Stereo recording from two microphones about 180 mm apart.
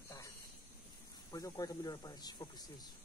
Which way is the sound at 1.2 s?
20° left (ahead or behind).